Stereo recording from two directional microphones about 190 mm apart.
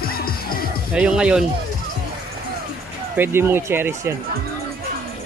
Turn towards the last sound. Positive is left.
turn(degrees=-10)  # may be behind; listen again after turning